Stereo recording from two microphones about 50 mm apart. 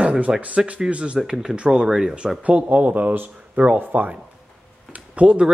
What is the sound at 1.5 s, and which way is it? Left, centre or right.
Speech, right.